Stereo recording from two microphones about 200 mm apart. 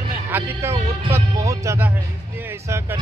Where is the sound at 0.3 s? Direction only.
10° right (ahead or behind).